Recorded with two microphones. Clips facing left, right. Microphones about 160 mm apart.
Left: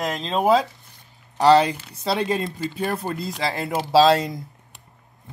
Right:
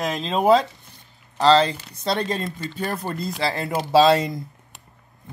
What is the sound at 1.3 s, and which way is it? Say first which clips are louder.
Speech: left 1 dB; 15° left (ahead or behind).